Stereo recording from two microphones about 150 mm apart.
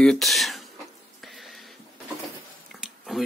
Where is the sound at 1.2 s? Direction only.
Centre (ahead or behind).